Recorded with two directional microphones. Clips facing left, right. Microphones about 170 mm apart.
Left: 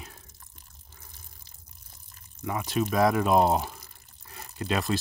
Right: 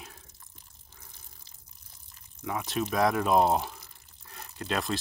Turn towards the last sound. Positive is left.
turn(degrees=0)  # may be behind; listen again after turning